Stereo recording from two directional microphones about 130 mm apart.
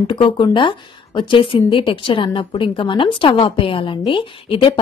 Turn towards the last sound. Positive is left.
turn(degrees=45)  # may be behind; listen again after turning